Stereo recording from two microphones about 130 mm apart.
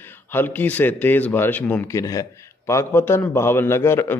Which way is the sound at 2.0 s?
25° left (ahead or behind).